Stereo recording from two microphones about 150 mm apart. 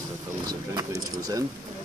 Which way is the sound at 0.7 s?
25° right (ahead or behind).